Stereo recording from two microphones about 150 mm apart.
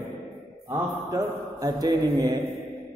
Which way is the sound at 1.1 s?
25° right (ahead or behind).